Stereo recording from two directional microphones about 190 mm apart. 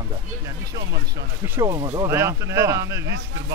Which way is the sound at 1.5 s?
20° right (ahead or behind).